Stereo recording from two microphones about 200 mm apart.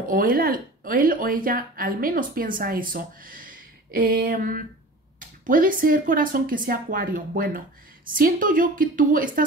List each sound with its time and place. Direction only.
0.1 s speech: 45° right (ahead or behind)